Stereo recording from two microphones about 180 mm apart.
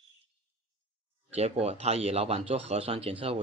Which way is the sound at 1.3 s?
35° right (ahead or behind).